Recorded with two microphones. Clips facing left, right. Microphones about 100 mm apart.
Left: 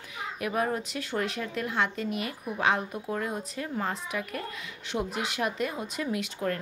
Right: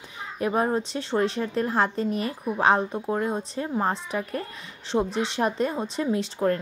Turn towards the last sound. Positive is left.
turn(degrees=-30)  # may be behind; listen again after turning